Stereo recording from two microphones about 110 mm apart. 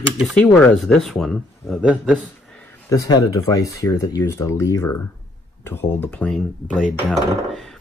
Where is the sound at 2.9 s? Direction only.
35° left (ahead or behind).